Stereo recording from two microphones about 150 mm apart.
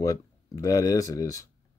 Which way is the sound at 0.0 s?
25° left (ahead or behind).